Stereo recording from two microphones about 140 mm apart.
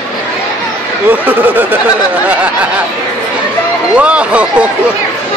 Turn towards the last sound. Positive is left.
turn(degrees=-10)  # may be behind; listen again after turning